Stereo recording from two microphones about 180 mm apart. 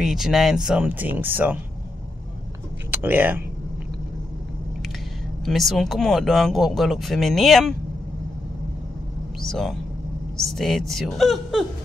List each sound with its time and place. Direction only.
0.0 s speech: centre (ahead or behind)
2.9 s speech: 10° right (ahead or behind)
5.4 s speech: centre (ahead or behind)
9.4 s speech: centre (ahead or behind)